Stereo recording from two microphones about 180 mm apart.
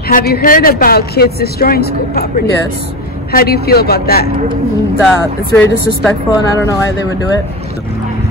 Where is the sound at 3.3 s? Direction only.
60° left (ahead or behind).